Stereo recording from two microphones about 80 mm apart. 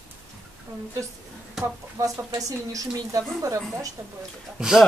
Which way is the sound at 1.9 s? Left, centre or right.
Right.